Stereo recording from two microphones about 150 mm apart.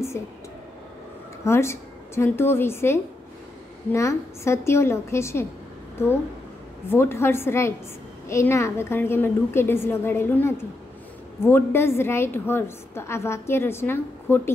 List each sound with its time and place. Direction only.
0.2 s a woman's voice: 15° left (ahead or behind)
1.4 s a woman's voice: 20° left (ahead or behind)
6.9 s a woman's voice: 15° left (ahead or behind)